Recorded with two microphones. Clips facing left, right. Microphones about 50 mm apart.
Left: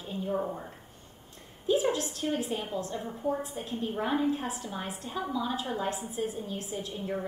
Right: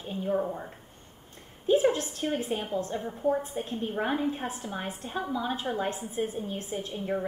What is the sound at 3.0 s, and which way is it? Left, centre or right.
Speech, centre.